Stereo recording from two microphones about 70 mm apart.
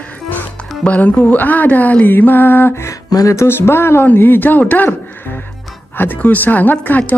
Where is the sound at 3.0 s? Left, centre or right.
Left.